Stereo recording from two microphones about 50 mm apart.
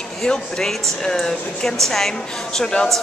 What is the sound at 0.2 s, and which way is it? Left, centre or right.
Speech, centre.